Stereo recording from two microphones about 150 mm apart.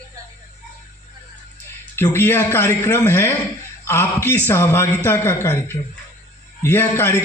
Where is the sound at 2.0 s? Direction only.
15° left (ahead or behind).